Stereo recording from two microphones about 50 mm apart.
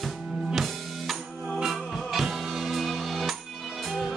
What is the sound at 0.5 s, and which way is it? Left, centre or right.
Drum kit, centre.